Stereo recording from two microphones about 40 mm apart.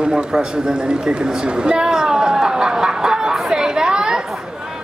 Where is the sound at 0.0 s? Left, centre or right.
Right.